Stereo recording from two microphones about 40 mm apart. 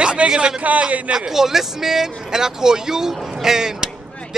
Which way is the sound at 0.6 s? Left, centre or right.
Right.